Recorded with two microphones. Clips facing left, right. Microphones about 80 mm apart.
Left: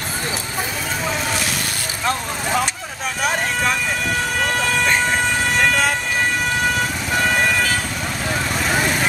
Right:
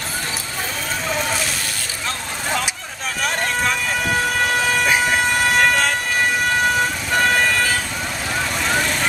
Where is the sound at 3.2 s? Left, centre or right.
Centre.